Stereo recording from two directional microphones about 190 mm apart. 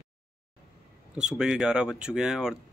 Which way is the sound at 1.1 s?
5° right (ahead or behind).